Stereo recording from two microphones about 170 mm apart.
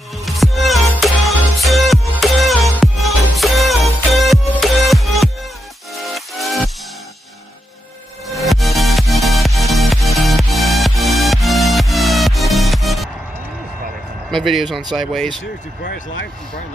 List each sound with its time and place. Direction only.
0.2 s music: centre (ahead or behind)
8.4 s music: centre (ahead or behind)
14.3 s speech: centre (ahead or behind)
15.8 s speech: 70° left (ahead or behind)